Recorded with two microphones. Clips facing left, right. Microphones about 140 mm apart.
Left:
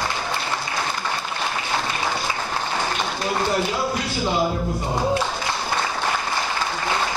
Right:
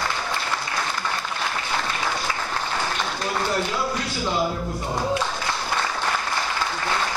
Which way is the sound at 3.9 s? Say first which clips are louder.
Left 2 dB; 15° left (ahead or behind).